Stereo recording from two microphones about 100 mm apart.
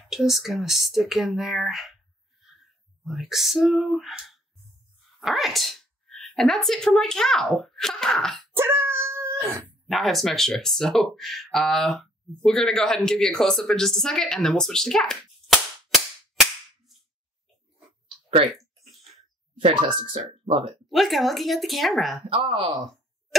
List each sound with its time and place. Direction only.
0.1 s speech: 5° right (ahead or behind)
3.0 s speech: centre (ahead or behind)
8.5 s dog: 25° right (ahead or behind)
9.8 s speech: centre (ahead or behind)
19.7 s speech: 55° right (ahead or behind)
20.9 s speech: centre (ahead or behind)
22.3 s speech: 60° right (ahead or behind)